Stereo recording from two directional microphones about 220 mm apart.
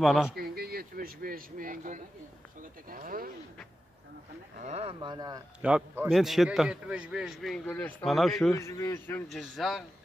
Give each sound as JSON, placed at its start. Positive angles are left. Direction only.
{"t": 0.0, "sound": "a man's voice", "side_deg": 0}
{"t": 0.4, "sound": "a sound", "side_deg": -45}
{"t": 4.6, "sound": "speech", "side_deg": -30}
{"t": 5.6, "sound": "a man's voice", "side_deg": -5}
{"t": 8.5, "sound": "a man's voice", "side_deg": 15}